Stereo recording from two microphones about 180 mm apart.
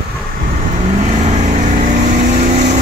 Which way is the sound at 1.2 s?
40° right (ahead or behind).